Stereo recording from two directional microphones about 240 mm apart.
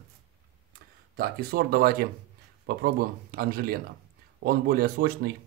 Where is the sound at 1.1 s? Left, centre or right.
Right.